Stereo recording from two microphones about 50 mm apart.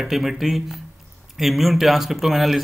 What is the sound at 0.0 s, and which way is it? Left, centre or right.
A man's voice, centre.